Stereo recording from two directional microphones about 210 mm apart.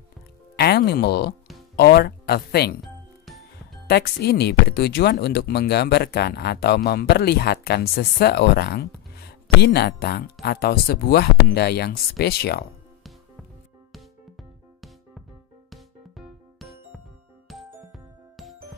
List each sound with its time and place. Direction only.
0.6 s speech: 50° left (ahead or behind)
3.8 s speech: 50° left (ahead or behind)
15.7 s music: centre (ahead or behind)